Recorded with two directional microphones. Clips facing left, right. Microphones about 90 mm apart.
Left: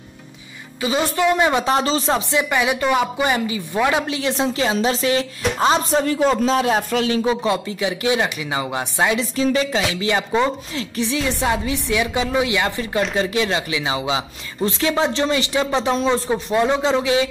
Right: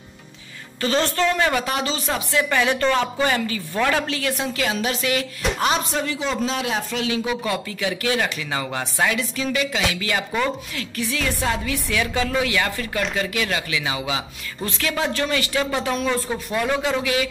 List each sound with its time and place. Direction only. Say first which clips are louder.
0.7 s speech: left 1 dB; 10° left (ahead or behind); by 2.4 s 30° left (ahead or behind)
2.5 s speech: left 1 dB; 10° left (ahead or behind); by 7.3 s 40° left (ahead or behind)
7.4 s speech: left 4 dB; 25° left (ahead or behind)